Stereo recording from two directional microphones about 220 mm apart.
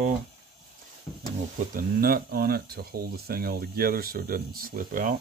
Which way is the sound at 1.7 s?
40° right (ahead or behind).